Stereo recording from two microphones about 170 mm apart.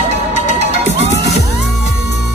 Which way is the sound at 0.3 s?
45° left (ahead or behind).